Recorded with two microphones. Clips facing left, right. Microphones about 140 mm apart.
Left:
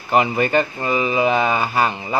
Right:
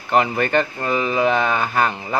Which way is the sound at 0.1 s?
5° left (ahead or behind).